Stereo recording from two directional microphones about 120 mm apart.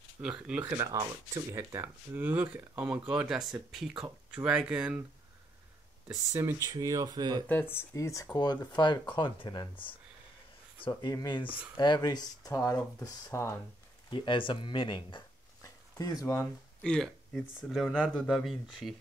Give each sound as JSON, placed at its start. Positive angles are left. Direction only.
{"t": 0.2, "sound": "speech", "side_deg": -10}
{"t": 0.7, "sound": "speech", "side_deg": -35}
{"t": 6.0, "sound": "speech", "side_deg": -20}
{"t": 7.4, "sound": "speech", "side_deg": 20}
{"t": 14.1, "sound": "speech", "side_deg": 45}
{"t": 15.6, "sound": "a sound", "side_deg": 30}
{"t": 16.8, "sound": "speech", "side_deg": 5}